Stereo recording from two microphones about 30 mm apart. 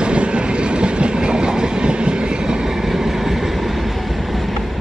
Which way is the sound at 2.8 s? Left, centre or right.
Centre.